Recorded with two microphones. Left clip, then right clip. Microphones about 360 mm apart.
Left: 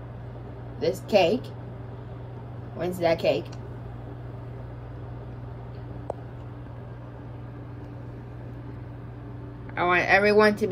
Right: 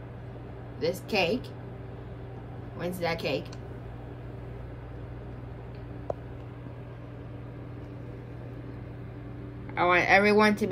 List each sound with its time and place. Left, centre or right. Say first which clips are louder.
0.7 s a woman's voice: left 6 dB; centre
2.8 s a woman's voice: left 7 dB; centre
9.8 s a woman's voice: left 1 dB; centre